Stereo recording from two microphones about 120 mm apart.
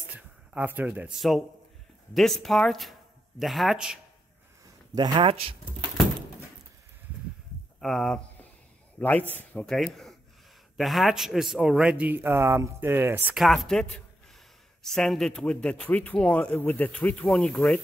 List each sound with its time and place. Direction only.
0.0 s a sound: 10° right (ahead or behind)
2.1 s speech: centre (ahead or behind)
4.9 s speech: 40° right (ahead or behind)
7.8 s a woman's voice: centre (ahead or behind)
8.9 s a man's voice: 15° left (ahead or behind)
9.7 s a woman's voice: centre (ahead or behind); by 13.4 s 15° right (ahead or behind)
13.4 s a woman's voice: centre (ahead or behind)